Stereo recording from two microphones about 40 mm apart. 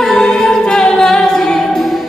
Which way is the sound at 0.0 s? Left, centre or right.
Centre.